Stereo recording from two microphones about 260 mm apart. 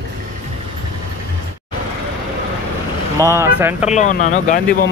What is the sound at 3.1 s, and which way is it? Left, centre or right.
Speech, centre.